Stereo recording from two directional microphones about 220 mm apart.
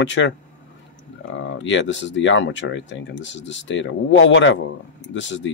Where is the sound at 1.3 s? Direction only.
55° left (ahead or behind).